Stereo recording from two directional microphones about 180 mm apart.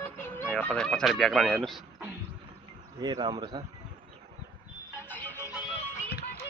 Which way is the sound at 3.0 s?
25° right (ahead or behind).